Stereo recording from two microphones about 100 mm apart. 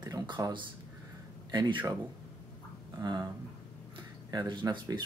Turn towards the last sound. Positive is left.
turn(degrees=-45)  # may be behind; listen again after turning